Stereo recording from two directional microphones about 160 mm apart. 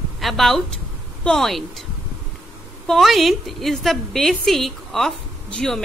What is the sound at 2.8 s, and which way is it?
A woman's voice, centre (ahead or behind).